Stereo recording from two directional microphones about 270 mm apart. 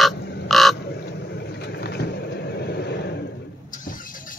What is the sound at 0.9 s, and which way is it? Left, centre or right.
Vehicle, left.